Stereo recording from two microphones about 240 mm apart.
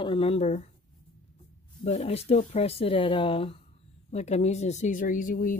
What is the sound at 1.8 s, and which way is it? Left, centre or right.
Speech, left.